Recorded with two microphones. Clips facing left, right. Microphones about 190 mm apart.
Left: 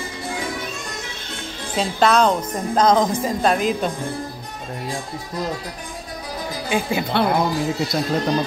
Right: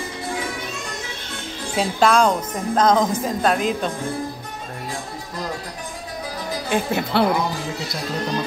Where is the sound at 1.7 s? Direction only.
10° right (ahead or behind).